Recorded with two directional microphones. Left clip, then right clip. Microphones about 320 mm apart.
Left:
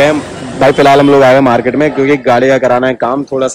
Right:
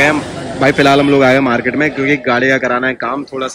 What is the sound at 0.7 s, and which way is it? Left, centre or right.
Speech, right.